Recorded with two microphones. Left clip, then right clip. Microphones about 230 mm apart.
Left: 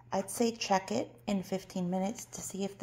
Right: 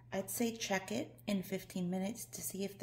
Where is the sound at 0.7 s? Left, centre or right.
Centre.